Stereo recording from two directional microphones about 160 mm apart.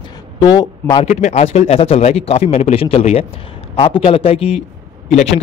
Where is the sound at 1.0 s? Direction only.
45° left (ahead or behind).